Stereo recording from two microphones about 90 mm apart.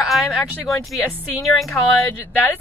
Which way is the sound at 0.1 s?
Centre (ahead or behind).